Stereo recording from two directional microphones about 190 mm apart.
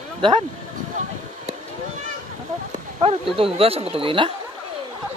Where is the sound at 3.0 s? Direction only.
30° right (ahead or behind).